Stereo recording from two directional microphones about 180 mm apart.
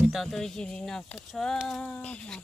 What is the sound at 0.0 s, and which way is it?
Speech, centre (ahead or behind).